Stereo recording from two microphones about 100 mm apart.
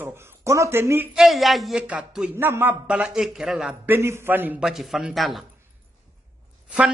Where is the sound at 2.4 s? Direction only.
20° right (ahead or behind).